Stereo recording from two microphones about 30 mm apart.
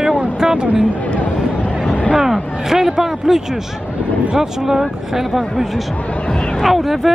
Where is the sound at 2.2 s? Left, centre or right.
Centre.